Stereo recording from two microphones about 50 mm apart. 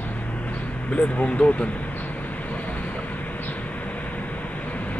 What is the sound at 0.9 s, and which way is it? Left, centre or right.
Speech, left.